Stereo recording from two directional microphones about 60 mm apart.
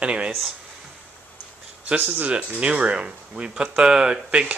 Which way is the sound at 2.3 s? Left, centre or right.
Centre.